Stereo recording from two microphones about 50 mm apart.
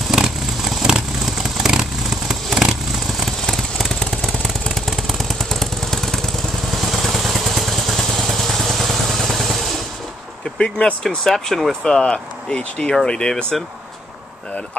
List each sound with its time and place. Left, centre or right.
0.1 s vehicle: centre
3.2 s vehicle: centre
4.6 s vehicle: centre
10.6 s speech: centre
11.2 s speech: centre